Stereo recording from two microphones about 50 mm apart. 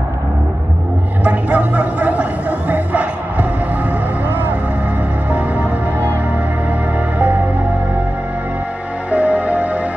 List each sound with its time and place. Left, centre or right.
1.2 s a sound: right
2.7 s music: right
9.1 s music: right